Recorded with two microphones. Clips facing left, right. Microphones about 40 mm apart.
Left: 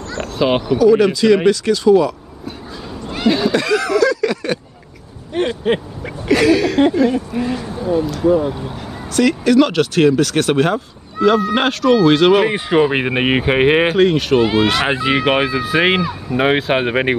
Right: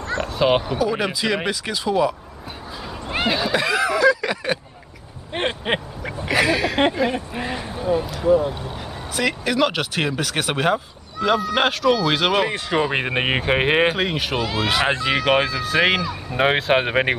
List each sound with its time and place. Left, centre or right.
0.4 s speech: centre
3.3 s speech: centre
5.3 s a sound: right
6.0 s speech: centre
8.3 s speech: centre
9.1 s speech: centre
12.4 s speech: left; by 14.4 s centre
14.4 s speech: left
14.9 s speech: centre
16.3 s speech: centre